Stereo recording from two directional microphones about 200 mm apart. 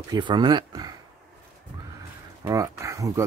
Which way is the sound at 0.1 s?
25° right (ahead or behind).